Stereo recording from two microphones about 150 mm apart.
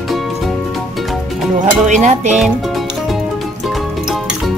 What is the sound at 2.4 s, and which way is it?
Music, centre (ahead or behind).